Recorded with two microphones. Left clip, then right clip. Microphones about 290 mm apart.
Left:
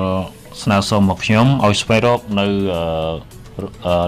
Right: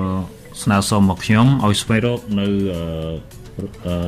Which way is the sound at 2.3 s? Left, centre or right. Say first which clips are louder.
Left 4 dB; centre.